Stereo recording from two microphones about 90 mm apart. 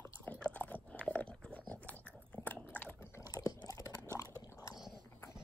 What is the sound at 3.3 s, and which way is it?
Chewing, 40° left (ahead or behind).